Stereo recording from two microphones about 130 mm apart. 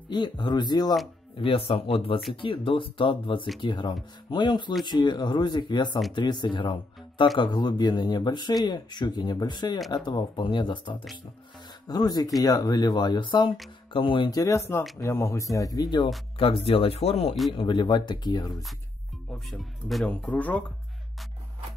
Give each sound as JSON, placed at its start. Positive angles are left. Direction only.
{"t": 0.1, "sound": "speech", "side_deg": 35}
{"t": 1.4, "sound": "speech", "side_deg": 45}
{"t": 16.3, "sound": "speech", "side_deg": 45}
{"t": 17.5, "sound": "speech", "side_deg": 40}
{"t": 19.3, "sound": "speech", "side_deg": 0}